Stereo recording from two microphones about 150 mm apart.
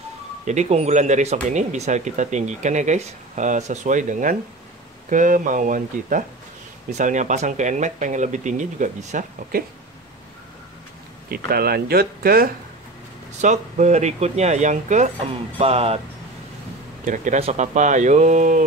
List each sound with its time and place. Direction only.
0.5 s speech: 50° right (ahead or behind)
11.2 s speech: 90° right
13.4 s speech: 50° right (ahead or behind)
15.6 s speech: 40° right (ahead or behind)
17.0 s speech: 60° right (ahead or behind)